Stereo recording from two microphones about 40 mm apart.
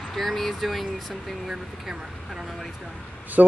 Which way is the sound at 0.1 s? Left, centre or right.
Centre.